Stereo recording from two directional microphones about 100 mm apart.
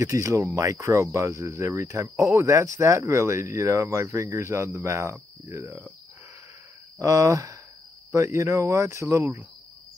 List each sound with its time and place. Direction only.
0.0 s speech: 30° right (ahead or behind)
7.0 s speech: 30° right (ahead or behind)